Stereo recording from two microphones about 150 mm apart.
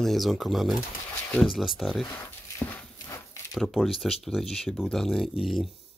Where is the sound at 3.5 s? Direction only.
Centre (ahead or behind).